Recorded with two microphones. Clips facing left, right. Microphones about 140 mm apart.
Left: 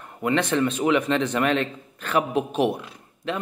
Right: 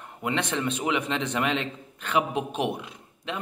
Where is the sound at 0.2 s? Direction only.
15° right (ahead or behind).